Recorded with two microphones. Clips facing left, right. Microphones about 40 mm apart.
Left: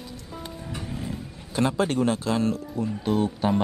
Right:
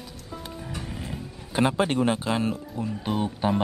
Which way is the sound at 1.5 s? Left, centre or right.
Right.